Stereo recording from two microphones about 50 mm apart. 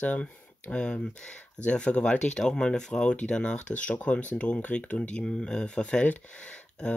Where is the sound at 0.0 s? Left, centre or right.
Left.